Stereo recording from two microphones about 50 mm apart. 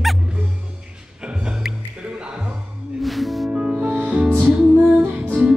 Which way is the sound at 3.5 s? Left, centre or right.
Centre.